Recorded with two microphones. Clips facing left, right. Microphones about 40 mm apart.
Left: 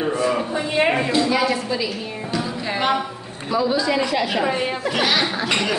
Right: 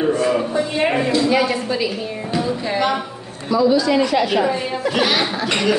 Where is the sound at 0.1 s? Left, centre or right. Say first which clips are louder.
Right 3 dB; centre.